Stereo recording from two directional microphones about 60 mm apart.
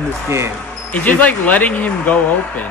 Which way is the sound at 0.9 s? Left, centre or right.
Left.